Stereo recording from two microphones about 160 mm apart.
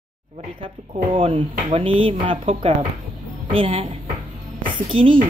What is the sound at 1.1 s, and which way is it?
A woman's voice, 35° right (ahead or behind).